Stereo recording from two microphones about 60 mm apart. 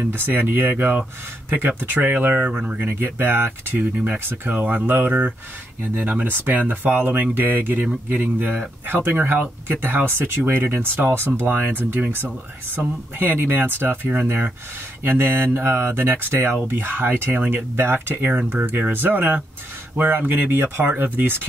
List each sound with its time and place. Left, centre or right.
0.1 s speech: right
2.5 s speech: centre
2.9 s speech: right